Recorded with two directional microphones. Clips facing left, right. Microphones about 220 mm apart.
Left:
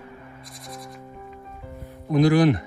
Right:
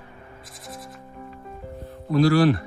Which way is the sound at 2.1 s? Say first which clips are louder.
Even; 20° left (ahead or behind).